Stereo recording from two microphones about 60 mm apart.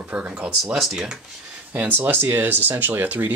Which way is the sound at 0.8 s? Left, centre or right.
Centre.